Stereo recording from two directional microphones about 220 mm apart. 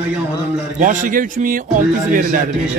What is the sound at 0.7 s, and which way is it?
A man's voice, 35° right (ahead or behind).